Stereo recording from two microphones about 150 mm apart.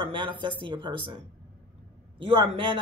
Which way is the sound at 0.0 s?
35° right (ahead or behind).